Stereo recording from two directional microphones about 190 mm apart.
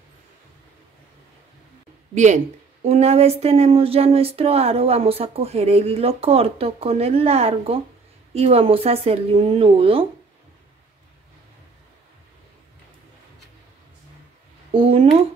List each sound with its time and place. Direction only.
2.1 s a woman's voice: 40° right (ahead or behind)
14.7 s a woman's voice: 30° right (ahead or behind)